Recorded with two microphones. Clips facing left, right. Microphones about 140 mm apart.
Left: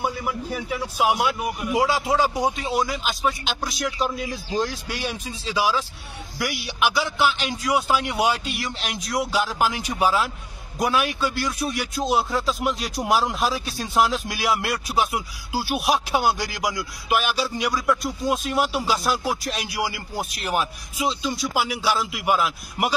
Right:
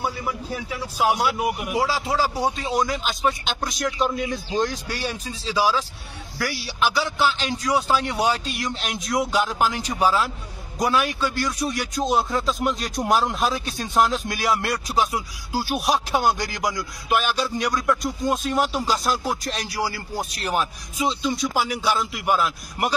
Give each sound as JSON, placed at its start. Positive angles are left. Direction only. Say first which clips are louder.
{"t": 0.6, "sound": "speech", "louder": "left 1 dB", "side_deg": 10}
{"t": 1.4, "sound": "speech", "louder": "right 1 dB", "side_deg": -20}
{"t": 1.8, "sound": "speech", "louder": "left 3 dB", "side_deg": 20}
{"t": 20.4, "sound": "speech", "louder": "even", "side_deg": 0}